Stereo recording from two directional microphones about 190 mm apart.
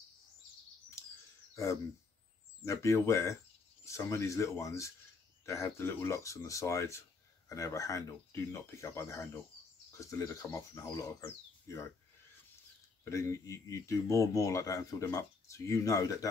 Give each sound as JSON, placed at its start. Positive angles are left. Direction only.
{"t": 1.5, "sound": "a sound", "side_deg": 15}
{"t": 2.6, "sound": "speech", "side_deg": 15}
{"t": 13.0, "sound": "speech", "side_deg": 15}